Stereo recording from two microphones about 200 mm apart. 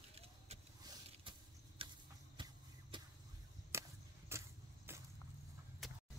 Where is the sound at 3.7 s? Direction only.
15° right (ahead or behind).